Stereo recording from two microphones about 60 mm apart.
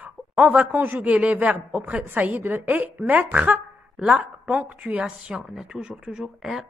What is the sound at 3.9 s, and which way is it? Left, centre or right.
Speech, centre.